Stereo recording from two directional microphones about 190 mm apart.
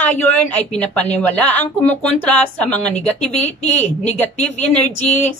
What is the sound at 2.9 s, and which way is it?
Speech, 35° left (ahead or behind).